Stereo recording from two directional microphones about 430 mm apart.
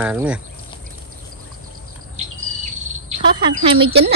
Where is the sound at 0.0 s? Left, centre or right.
Centre.